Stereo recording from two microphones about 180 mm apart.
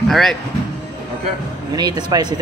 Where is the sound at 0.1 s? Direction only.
Centre (ahead or behind).